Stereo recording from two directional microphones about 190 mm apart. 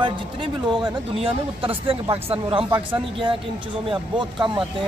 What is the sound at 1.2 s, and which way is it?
A man's voice, 30° right (ahead or behind).